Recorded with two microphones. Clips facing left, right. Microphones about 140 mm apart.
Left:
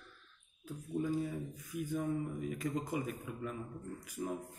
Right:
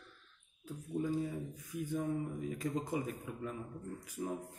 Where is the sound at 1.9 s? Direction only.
25° right (ahead or behind).